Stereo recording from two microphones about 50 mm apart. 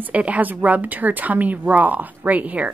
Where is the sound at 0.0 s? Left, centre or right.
Right.